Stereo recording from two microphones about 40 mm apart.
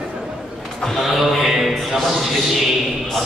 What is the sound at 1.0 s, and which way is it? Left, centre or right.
Mantra, centre.